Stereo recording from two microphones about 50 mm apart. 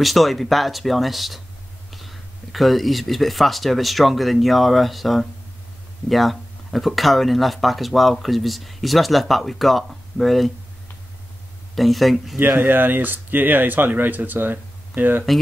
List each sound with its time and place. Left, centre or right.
0.0 s speech: centre
11.7 s speech: centre
12.4 s speech: right